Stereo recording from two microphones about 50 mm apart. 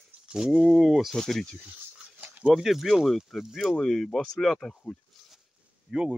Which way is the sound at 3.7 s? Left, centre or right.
Centre.